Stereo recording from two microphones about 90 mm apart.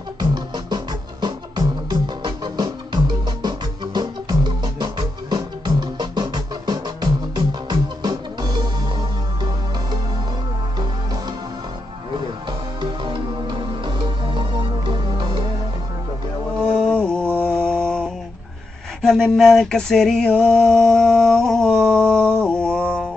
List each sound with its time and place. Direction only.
0.2 s music: 50° right (ahead or behind)
12.8 s music: 65° right (ahead or behind)
16.5 s mantra: 5° left (ahead or behind)
19.0 s a sound: 5° left (ahead or behind)